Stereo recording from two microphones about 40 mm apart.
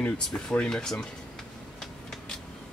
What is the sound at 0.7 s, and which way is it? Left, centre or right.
Speech, centre.